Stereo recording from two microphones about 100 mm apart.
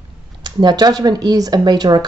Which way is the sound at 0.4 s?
45° right (ahead or behind).